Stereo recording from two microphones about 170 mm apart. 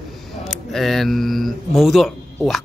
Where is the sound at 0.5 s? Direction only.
Centre (ahead or behind).